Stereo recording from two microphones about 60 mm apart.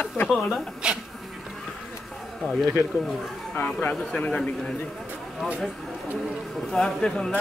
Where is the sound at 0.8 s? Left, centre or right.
Centre.